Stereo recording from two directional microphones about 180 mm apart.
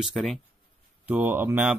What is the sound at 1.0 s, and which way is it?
Speech, 10° right (ahead or behind).